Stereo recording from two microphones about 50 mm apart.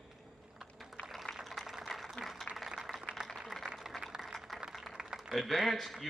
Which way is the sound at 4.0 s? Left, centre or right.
Centre.